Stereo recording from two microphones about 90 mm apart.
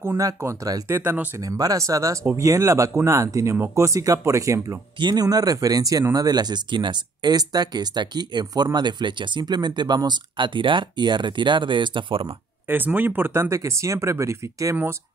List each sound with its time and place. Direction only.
0.2 s speech: 35° right (ahead or behind)
1.4 s speech: 45° right (ahead or behind)
5.0 s speech: 45° right (ahead or behind); by 12.3 s 70° right (ahead or behind)
12.6 s speech: 20° right (ahead or behind)